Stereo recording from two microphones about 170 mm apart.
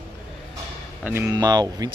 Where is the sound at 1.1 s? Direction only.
15° right (ahead or behind).